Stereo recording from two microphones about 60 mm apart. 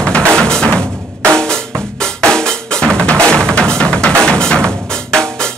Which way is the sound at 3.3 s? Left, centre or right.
Centre.